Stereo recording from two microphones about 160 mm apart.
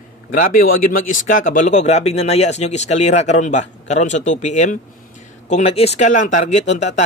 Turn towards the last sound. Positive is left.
turn(degrees=45)  # may be behind; listen again after turning